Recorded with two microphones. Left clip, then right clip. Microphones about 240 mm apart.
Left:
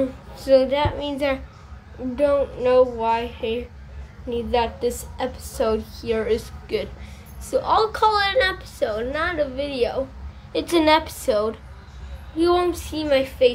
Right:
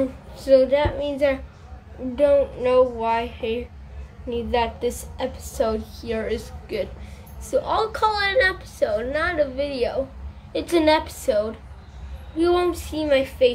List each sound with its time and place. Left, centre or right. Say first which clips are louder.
0.4 s a woman's voice: right 1 dB; centre
2.1 s a woman's voice: right 2 dB; centre
12.4 s a woman's voice: left 1 dB; centre